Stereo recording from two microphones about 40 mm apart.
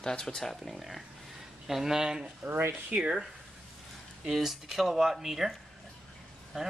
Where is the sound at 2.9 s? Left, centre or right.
Right.